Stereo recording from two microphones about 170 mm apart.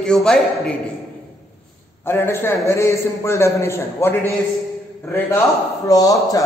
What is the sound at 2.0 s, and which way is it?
A man's voice, 15° left (ahead or behind).